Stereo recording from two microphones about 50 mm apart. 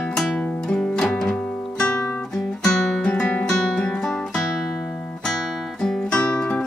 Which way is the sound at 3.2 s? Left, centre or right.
Left.